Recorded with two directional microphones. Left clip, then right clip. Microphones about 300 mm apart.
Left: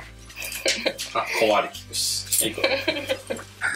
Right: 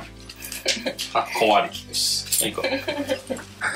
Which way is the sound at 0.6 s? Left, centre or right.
Centre.